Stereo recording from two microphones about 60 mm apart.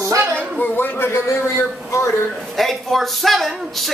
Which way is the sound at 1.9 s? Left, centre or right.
Left.